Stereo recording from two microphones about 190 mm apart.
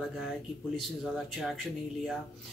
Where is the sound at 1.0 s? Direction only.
Centre (ahead or behind).